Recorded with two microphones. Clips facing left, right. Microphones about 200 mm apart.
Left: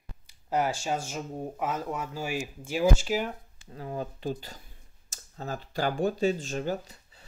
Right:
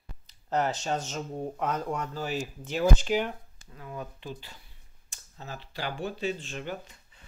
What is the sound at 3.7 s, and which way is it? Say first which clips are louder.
Speech: left 5 dB; 35° left (ahead or behind).